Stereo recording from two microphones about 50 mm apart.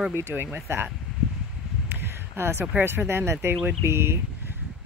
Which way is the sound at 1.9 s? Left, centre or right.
Right.